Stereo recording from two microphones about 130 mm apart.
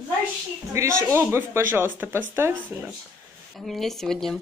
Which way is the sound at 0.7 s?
25° right (ahead or behind).